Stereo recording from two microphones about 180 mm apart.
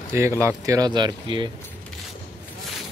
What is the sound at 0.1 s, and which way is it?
Speech, 15° right (ahead or behind).